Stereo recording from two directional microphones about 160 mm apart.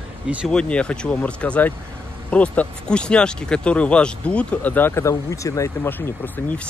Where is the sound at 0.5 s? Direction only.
5° left (ahead or behind).